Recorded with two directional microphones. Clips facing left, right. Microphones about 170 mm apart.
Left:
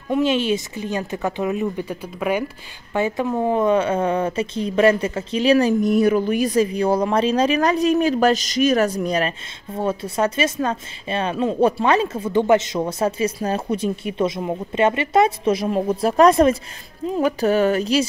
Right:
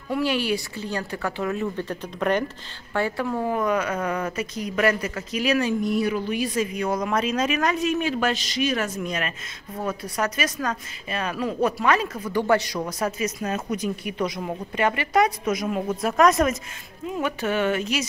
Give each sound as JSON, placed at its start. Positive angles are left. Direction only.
{"t": 0.1, "sound": "speech", "side_deg": 20}